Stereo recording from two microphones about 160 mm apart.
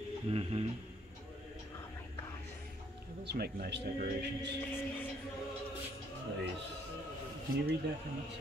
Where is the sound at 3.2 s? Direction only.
75° right (ahead or behind).